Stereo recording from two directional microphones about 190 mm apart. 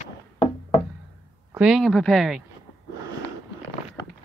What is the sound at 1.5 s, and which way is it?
Speech, 5° right (ahead or behind).